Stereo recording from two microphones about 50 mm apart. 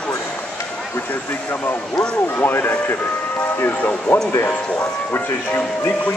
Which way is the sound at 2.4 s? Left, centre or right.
Left.